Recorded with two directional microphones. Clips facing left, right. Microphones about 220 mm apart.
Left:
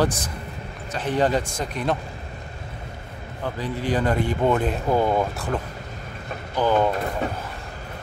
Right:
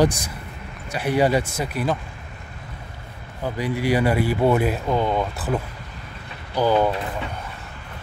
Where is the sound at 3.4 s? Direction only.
10° right (ahead or behind).